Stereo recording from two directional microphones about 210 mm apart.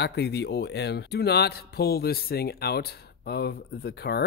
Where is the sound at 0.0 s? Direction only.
50° left (ahead or behind).